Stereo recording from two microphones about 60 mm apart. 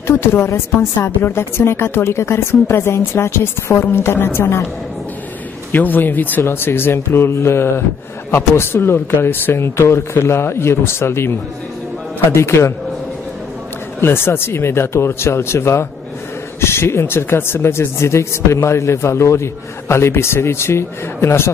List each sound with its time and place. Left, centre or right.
0.0 s speech: left
5.7 s speech: left
14.0 s speech: left